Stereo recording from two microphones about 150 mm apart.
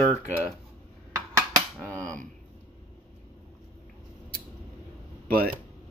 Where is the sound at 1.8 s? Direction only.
10° left (ahead or behind).